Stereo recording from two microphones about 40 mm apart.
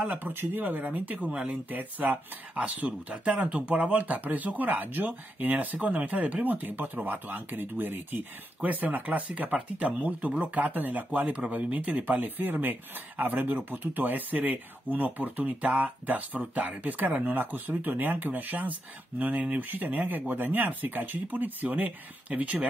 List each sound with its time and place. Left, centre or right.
0.0 s speech: right
0.3 s speech: right
1.3 s speech: right
1.7 s speech: right
3.5 s speech: right
8.5 s speech: right
11.1 s speech: right
12.0 s speech: right